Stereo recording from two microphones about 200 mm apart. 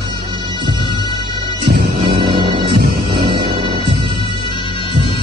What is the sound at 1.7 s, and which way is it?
Music, 50° right (ahead or behind).